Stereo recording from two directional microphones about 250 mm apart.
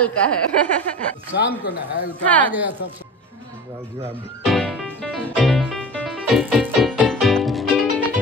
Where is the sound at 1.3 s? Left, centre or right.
Left.